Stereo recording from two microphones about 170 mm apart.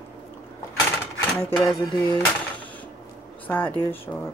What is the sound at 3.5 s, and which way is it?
Speech, 10° left (ahead or behind).